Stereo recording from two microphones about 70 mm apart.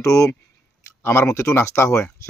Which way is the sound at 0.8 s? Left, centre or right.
Left.